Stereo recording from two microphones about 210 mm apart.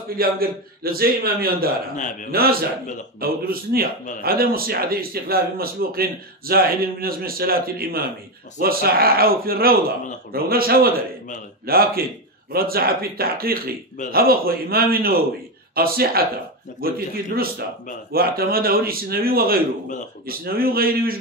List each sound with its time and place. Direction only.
0.2 s a man's voice: 45° right (ahead or behind)